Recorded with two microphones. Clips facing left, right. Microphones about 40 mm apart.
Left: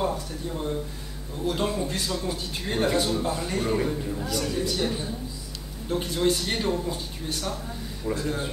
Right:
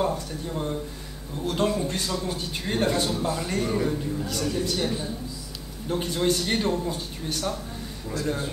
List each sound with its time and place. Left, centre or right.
0.0 s speech: centre